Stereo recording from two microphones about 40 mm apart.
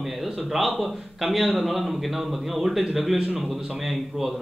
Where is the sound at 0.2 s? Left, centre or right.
Centre.